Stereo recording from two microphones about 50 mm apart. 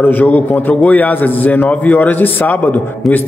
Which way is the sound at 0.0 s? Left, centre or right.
Left.